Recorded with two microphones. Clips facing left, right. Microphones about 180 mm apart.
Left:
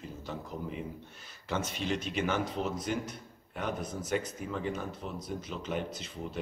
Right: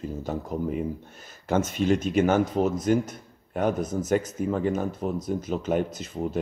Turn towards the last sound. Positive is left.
turn(degrees=-45)  # may be behind; listen again after turning